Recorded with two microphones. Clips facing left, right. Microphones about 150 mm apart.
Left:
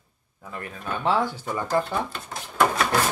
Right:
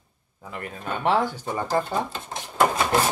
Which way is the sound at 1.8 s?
20° right (ahead or behind).